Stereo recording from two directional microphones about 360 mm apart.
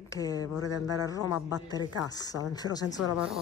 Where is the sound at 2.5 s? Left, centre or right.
Centre.